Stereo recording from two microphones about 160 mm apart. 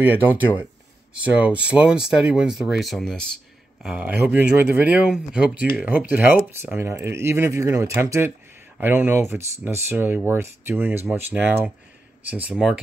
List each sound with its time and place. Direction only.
0.0 s speech: 10° right (ahead or behind)
3.8 s speech: 10° right (ahead or behind)